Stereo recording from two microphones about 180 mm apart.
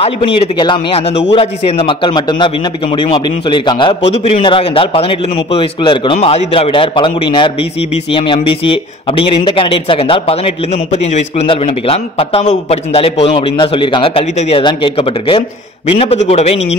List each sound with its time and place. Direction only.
0.0 s a man's voice: 25° left (ahead or behind)